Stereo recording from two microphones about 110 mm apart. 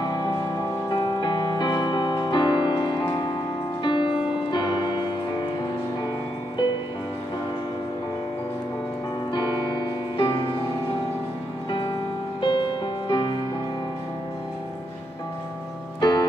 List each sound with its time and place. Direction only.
0.0 s music: 40° left (ahead or behind)
9.3 s music: 45° left (ahead or behind)
12.4 s music: 45° left (ahead or behind)
16.0 s music: 40° left (ahead or behind)